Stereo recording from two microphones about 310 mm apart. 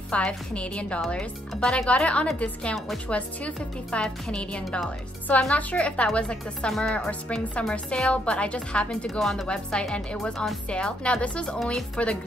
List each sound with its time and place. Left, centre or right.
0.1 s speech: centre